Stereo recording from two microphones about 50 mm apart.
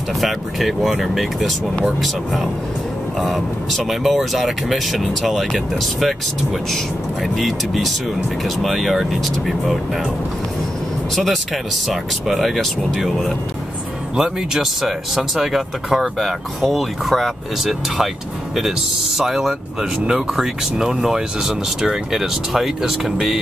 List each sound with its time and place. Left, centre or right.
0.2 s speech: centre
11.1 s speech: centre